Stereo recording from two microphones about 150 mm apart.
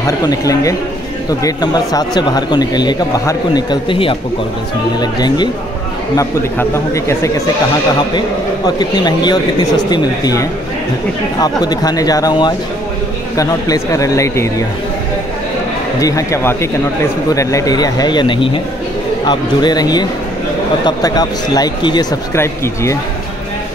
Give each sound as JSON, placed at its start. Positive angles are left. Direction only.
{"t": 0.0, "sound": "speech", "side_deg": 25}
{"t": 6.7, "sound": "speech", "side_deg": 20}
{"t": 8.6, "sound": "speech", "side_deg": 30}
{"t": 16.0, "sound": "speech", "side_deg": 20}